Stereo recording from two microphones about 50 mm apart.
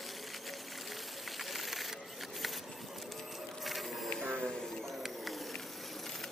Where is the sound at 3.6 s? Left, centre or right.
Centre.